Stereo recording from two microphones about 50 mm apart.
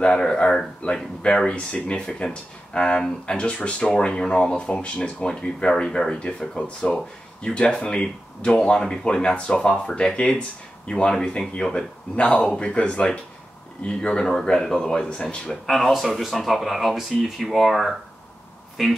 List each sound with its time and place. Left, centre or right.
0.0 s speech: centre
15.6 s speech: centre